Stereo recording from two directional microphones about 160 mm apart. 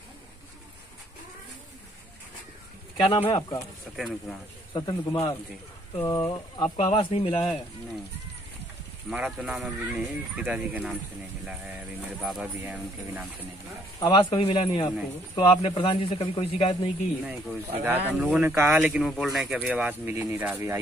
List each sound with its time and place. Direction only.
3.0 s speech: 30° left (ahead or behind)
3.9 s speech: centre (ahead or behind)
4.7 s speech: 25° left (ahead or behind)
6.6 s speech: 35° left (ahead or behind)
9.1 s speech: 10° right (ahead or behind)
12.2 s speech: 5° right (ahead or behind)
13.9 s speech: 25° left (ahead or behind)
17.2 s speech: 5° right (ahead or behind)